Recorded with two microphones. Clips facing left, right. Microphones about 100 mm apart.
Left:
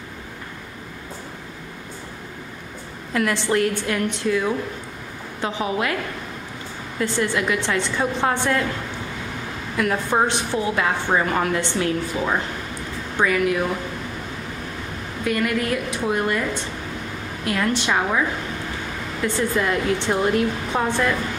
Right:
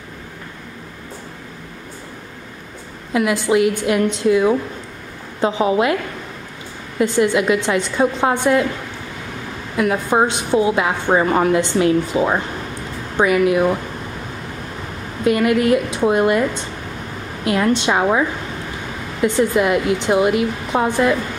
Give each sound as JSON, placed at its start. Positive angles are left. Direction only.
{"t": 3.1, "sound": "a woman's voice", "side_deg": -10}
{"t": 7.0, "sound": "speech", "side_deg": -15}
{"t": 9.8, "sound": "a woman's voice", "side_deg": -15}
{"t": 15.2, "sound": "a woman's voice", "side_deg": -20}
{"t": 17.5, "sound": "a woman's voice", "side_deg": -20}
{"t": 19.2, "sound": "speech", "side_deg": -15}